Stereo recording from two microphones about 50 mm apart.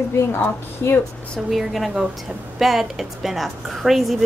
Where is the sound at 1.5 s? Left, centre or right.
Centre.